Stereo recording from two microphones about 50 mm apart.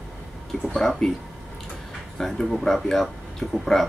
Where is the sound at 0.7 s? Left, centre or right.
Centre.